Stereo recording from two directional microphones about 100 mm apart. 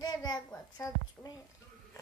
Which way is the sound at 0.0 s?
40° left (ahead or behind).